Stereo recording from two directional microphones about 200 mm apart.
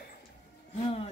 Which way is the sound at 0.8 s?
30° left (ahead or behind).